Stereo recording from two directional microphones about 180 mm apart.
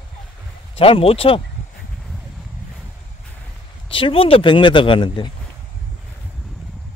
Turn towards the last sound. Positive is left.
turn(degrees=25)  # may be behind; listen again after turning